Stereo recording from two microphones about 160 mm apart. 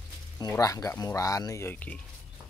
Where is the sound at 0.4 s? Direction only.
20° left (ahead or behind).